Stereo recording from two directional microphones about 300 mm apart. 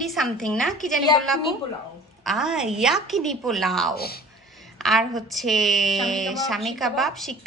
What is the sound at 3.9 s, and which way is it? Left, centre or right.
Speech, left.